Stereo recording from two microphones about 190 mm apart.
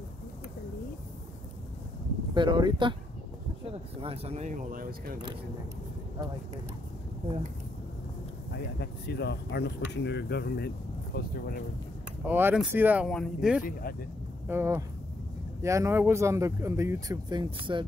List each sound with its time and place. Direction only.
2.3 s speech: 25° right (ahead or behind)
4.0 s speech: 30° right (ahead or behind); by 5.2 s 50° right (ahead or behind)
8.7 s speech: 60° left (ahead or behind)
12.3 s speech: 10° right (ahead or behind)